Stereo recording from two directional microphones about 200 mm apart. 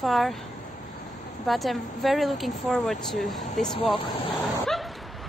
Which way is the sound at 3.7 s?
25° left (ahead or behind).